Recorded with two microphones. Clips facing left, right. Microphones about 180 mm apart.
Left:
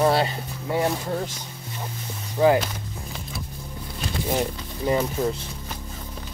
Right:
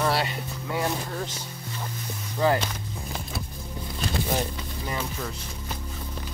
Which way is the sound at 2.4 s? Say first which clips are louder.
Left 5 dB; 10° left (ahead or behind).